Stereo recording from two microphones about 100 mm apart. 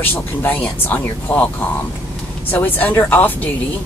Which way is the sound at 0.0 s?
20° left (ahead or behind).